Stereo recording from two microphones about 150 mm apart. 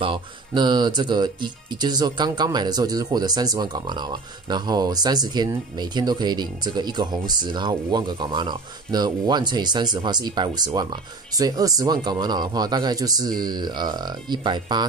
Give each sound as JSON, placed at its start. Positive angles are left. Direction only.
{"t": 0.0, "sound": "speech", "side_deg": -30}